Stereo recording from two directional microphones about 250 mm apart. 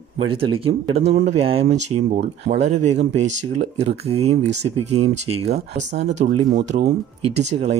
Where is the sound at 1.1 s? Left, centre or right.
Right.